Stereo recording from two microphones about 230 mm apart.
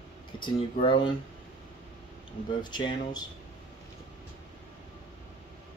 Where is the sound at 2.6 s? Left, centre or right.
Centre.